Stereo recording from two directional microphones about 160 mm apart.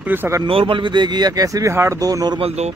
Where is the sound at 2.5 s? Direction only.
45° right (ahead or behind).